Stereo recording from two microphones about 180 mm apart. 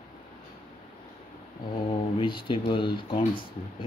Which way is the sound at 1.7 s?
25° left (ahead or behind).